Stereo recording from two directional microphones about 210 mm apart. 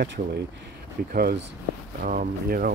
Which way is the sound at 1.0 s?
45° right (ahead or behind).